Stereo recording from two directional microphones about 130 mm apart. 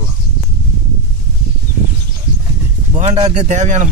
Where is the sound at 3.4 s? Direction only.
65° right (ahead or behind).